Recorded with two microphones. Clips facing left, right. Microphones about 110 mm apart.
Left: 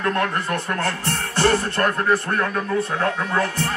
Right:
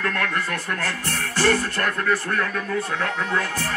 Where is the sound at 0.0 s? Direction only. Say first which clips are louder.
Left 3 dB; 30° left (ahead or behind).